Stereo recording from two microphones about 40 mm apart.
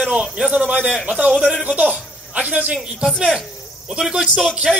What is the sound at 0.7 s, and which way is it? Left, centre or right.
Speech, right.